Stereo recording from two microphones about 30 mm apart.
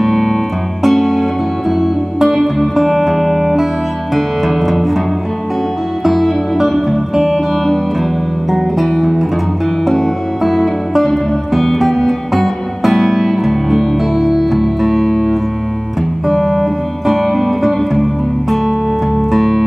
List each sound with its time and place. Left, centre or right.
0.0 s music: centre
6.0 s music: centre
8.8 s music: centre
10.4 s music: centre
12.8 s music: centre
19.3 s music: centre